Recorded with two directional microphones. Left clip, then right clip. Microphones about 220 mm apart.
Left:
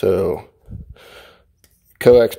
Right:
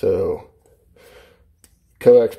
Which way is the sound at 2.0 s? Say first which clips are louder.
Left 1 dB; 35° left (ahead or behind).